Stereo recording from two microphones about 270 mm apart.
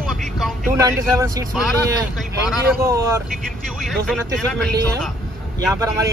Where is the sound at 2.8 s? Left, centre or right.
Centre.